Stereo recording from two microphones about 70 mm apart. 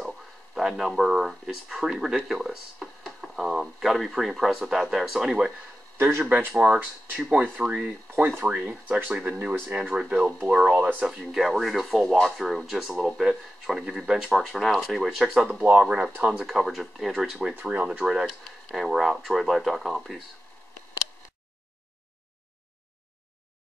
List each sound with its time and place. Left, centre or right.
0.0 s speech: centre
5.9 s speech: right
6.2 s speech: right
10.8 s speech: right
11.1 s speech: centre
15.6 s speech: centre